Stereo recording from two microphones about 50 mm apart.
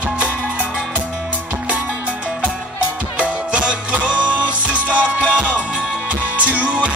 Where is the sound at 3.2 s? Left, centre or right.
Right.